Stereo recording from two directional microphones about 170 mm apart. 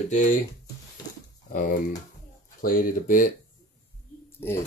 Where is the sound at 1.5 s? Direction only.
55° left (ahead or behind).